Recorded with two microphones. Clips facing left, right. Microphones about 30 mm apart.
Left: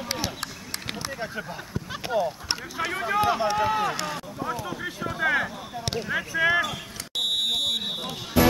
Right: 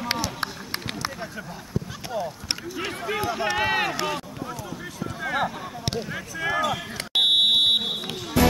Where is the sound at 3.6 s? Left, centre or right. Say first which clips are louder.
Right 1 dB; right.